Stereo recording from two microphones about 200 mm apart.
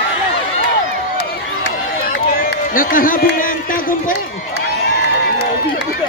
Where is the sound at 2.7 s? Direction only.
45° left (ahead or behind).